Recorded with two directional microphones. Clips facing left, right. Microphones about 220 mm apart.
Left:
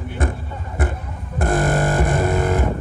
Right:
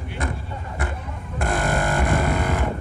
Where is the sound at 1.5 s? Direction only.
45° left (ahead or behind).